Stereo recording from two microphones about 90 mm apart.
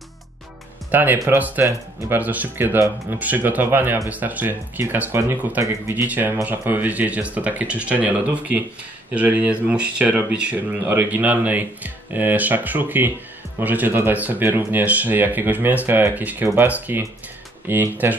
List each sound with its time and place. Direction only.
0.9 s speech: 20° right (ahead or behind)
1.6 s speech: 30° right (ahead or behind)
2.1 s speech: 20° right (ahead or behind)
6.0 s speech: 20° right (ahead or behind)